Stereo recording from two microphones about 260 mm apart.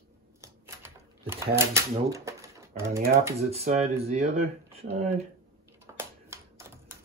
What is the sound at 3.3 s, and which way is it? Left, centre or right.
Speech, right.